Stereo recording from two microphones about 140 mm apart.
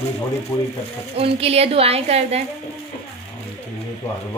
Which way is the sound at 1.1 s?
45° right (ahead or behind).